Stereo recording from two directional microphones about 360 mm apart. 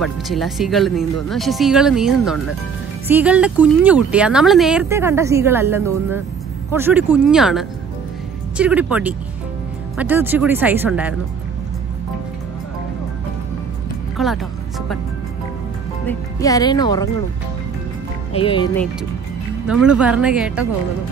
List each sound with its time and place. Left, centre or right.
0.0 s speech: centre
14.1 s speech: centre
16.1 s speech: centre
18.3 s speech: centre
19.7 s speech: centre